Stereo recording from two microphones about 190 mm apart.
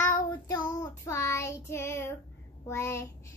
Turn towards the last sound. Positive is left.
turn(degrees=15)  # may be behind; listen again after turning